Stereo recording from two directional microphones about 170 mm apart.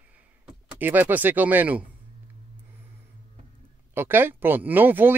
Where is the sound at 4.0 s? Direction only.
15° right (ahead or behind).